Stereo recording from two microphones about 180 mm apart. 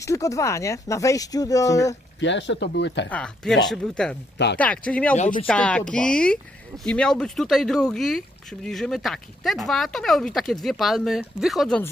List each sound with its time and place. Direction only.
0.0 s speech: 15° left (ahead or behind)
2.1 s speech: 85° left
3.1 s speech: 5° left (ahead or behind)
5.1 s speech: 40° left (ahead or behind)
5.5 s speech: 5° left (ahead or behind)